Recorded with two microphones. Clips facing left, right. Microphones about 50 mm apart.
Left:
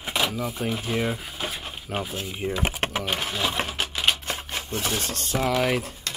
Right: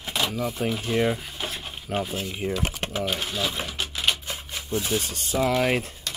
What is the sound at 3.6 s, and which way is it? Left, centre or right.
Typewriter, left.